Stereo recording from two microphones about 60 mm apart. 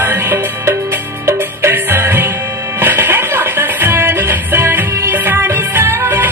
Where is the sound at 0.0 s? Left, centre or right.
Right.